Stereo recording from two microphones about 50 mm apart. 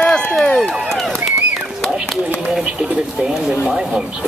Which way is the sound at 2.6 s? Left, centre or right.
Centre.